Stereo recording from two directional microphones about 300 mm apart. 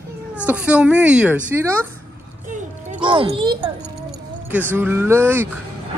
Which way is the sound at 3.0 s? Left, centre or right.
Centre.